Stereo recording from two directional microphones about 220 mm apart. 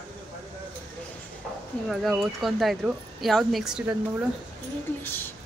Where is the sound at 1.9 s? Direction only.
Centre (ahead or behind).